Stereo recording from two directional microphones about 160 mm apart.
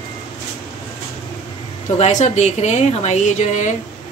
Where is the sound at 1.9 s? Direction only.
45° left (ahead or behind).